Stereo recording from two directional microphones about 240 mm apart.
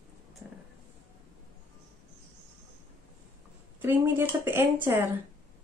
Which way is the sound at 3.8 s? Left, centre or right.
Centre.